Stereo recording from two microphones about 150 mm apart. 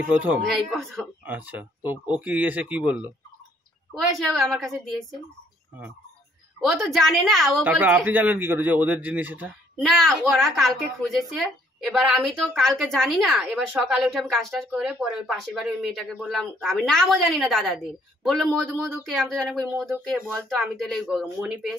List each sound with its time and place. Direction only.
0.1 s a man's voice: 10° right (ahead or behind)
0.7 s a woman's voice: centre (ahead or behind)
1.2 s a man's voice: 10° right (ahead or behind)
4.3 s a woman's voice: centre (ahead or behind)
6.6 s a woman's voice: centre (ahead or behind)
7.6 s a man's voice: 10° right (ahead or behind)
9.8 s a woman's voice: centre (ahead or behind)